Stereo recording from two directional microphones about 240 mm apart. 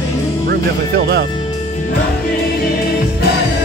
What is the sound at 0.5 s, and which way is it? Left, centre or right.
Speech, right.